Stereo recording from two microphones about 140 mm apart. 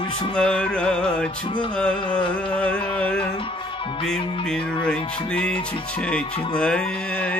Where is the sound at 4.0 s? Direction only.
5° left (ahead or behind).